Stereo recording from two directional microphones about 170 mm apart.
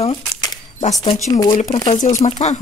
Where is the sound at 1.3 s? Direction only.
20° left (ahead or behind).